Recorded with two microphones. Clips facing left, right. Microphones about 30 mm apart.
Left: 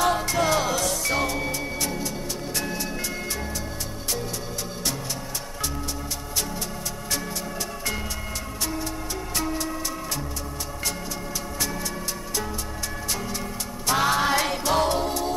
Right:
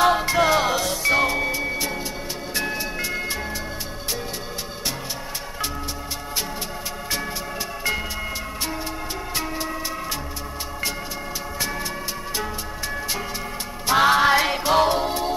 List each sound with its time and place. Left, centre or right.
0.0 s music: right
9.4 s music: right
13.8 s music: right